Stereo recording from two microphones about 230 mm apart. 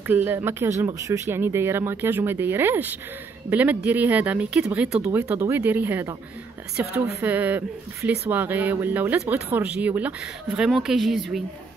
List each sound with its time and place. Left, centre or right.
0.0 s speech: centre